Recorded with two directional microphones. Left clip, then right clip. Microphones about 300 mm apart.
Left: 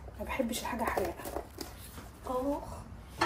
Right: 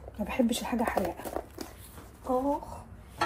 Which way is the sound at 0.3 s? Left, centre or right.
Right.